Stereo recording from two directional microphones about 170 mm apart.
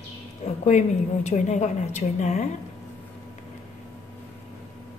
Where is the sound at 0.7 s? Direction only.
45° left (ahead or behind).